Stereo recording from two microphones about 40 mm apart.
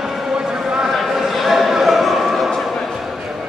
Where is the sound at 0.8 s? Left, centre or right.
Centre.